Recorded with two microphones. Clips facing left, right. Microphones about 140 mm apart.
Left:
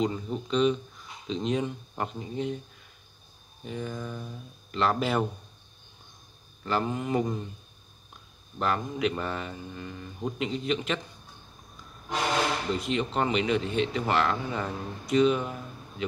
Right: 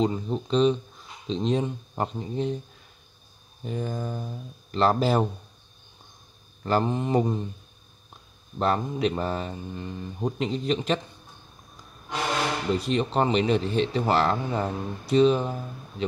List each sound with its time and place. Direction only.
0.0 s a man's voice: 30° right (ahead or behind)
3.6 s a man's voice: 40° right (ahead or behind)
6.8 s mantra: 30° right (ahead or behind)
8.5 s a man's voice: 30° right (ahead or behind)
12.7 s a man's voice: 35° right (ahead or behind)